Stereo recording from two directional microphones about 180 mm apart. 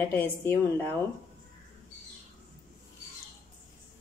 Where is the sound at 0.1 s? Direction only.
10° left (ahead or behind).